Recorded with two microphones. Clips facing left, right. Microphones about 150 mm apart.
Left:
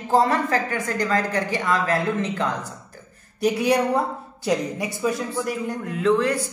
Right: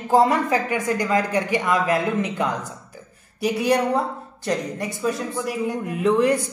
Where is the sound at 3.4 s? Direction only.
Centre (ahead or behind).